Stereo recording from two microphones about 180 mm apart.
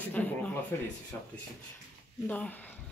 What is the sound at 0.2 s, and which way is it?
Speech, 5° left (ahead or behind).